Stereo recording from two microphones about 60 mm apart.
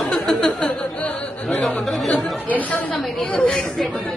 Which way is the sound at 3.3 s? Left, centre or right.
Centre.